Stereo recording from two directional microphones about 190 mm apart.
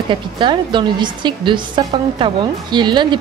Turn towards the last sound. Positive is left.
turn(degrees=-25)  # may be behind; listen again after turning